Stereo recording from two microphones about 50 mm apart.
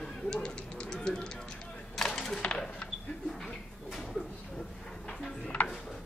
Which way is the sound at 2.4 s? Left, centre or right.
Left.